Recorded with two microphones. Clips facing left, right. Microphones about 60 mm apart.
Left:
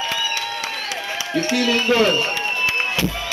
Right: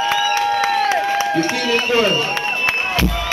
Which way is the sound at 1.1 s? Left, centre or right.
Right.